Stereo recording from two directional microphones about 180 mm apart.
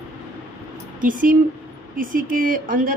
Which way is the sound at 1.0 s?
50° right (ahead or behind).